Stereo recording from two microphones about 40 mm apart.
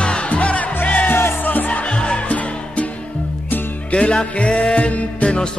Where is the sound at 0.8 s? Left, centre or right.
Left.